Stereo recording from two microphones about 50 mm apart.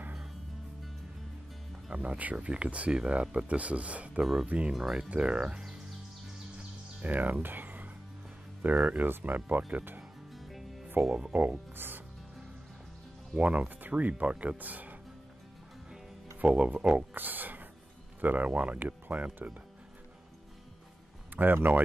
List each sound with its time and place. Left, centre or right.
2.0 s speech: right
4.2 s speech: centre
4.5 s speech: right
7.0 s a sound: right
8.6 s speech: right
10.3 s music: centre
11.0 s speech: centre
11.7 s speech: right
13.4 s speech: right
14.6 s speech: right
16.3 s speech: right
17.1 s speech: right
21.4 s speech: right